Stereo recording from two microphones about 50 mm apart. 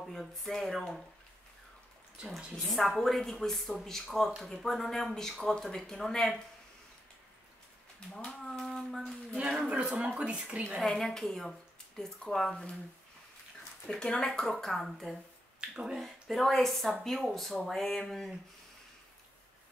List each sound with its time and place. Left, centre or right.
0.1 s speech: centre
2.7 s speech: centre
8.3 s speech: centre
9.7 s speech: right
10.8 s speech: centre
13.8 s speech: centre
15.7 s speech: centre
16.0 s speech: centre